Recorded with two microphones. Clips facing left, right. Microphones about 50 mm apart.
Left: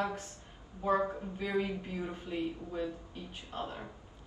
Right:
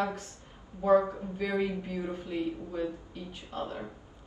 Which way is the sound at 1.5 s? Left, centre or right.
Left.